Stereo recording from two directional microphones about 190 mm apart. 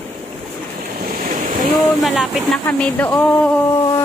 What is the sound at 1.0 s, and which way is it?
Waves, 45° right (ahead or behind).